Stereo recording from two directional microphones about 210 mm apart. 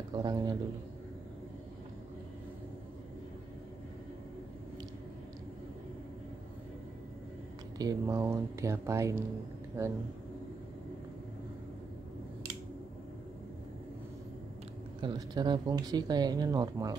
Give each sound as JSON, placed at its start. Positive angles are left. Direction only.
{"t": 0.1, "sound": "speech", "side_deg": -20}
{"t": 7.8, "sound": "speech", "side_deg": -15}
{"t": 15.0, "sound": "speech", "side_deg": -20}